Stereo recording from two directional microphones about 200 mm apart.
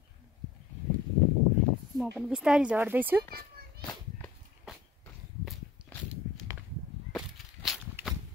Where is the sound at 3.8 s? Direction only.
5° left (ahead or behind).